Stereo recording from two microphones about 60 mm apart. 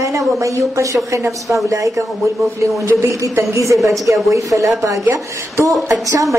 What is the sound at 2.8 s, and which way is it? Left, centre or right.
A woman's voice, right.